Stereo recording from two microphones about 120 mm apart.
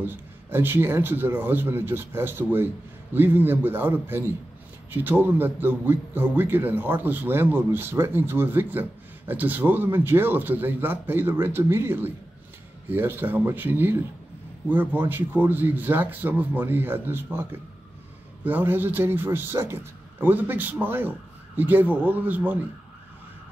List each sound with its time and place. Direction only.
0.0 s a man's voice: 15° right (ahead or behind)